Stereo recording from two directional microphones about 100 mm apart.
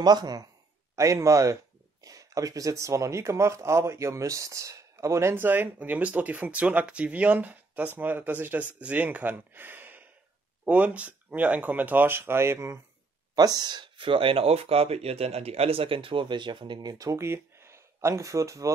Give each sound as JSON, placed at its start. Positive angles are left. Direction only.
{"t": 0.0, "sound": "speech", "side_deg": -45}
{"t": 0.9, "sound": "speech", "side_deg": -30}
{"t": 13.4, "sound": "speech", "side_deg": -40}
{"t": 17.0, "sound": "speech", "side_deg": -30}